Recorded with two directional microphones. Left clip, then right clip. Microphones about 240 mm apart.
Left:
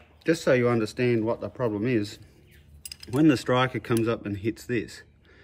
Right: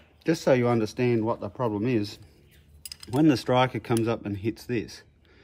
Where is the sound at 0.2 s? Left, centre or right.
Right.